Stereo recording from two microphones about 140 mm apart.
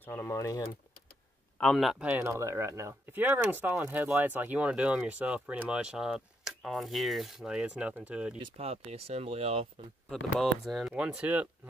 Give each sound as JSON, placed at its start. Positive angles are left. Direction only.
{"t": 0.0, "sound": "speech", "side_deg": 15}
{"t": 1.6, "sound": "speech", "side_deg": 5}
{"t": 8.5, "sound": "speech", "side_deg": -45}
{"t": 10.1, "sound": "speech", "side_deg": 0}